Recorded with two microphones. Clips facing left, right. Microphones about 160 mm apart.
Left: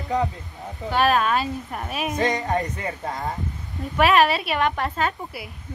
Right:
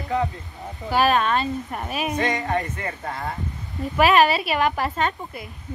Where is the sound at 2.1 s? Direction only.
20° left (ahead or behind).